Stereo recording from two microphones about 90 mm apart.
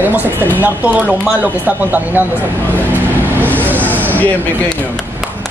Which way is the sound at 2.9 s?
20° right (ahead or behind).